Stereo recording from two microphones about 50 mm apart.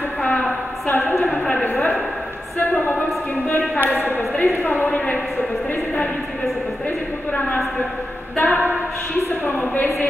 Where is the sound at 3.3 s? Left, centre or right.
Left.